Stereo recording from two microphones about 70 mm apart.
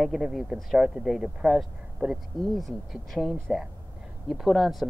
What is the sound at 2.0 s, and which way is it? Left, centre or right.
Speech, right.